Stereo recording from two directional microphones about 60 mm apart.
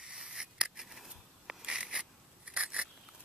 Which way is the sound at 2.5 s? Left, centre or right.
Centre.